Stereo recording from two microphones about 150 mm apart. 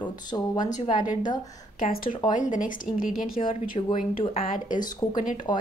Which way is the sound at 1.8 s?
55° left (ahead or behind).